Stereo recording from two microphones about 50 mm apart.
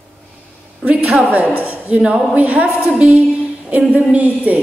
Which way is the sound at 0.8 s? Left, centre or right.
Right.